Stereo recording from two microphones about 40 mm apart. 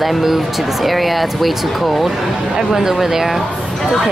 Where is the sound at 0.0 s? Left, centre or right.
Centre.